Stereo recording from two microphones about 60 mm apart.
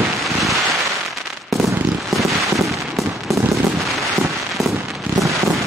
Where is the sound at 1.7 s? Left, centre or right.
Right.